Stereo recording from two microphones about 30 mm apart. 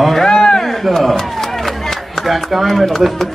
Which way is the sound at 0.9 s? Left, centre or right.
Centre.